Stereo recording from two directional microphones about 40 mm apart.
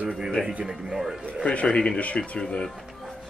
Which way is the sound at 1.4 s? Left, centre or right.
Left.